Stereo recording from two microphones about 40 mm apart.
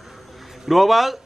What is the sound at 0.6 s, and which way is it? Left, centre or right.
Speech, centre.